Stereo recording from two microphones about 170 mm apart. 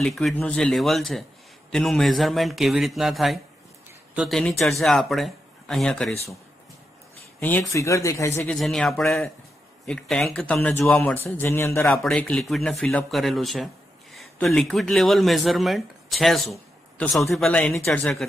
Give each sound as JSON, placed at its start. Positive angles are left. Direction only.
{"t": 0.0, "sound": "speech", "side_deg": 0}
{"t": 7.3, "sound": "a man's voice", "side_deg": 10}
{"t": 8.4, "sound": "a man's voice", "side_deg": 5}
{"t": 11.9, "sound": "speech", "side_deg": 0}